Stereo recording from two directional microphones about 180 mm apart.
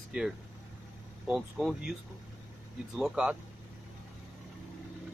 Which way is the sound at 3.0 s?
5° right (ahead or behind).